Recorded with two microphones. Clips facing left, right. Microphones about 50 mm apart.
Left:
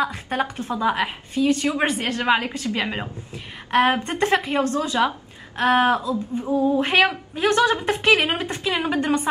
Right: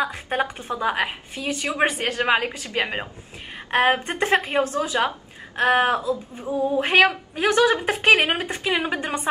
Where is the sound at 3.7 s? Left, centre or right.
Centre.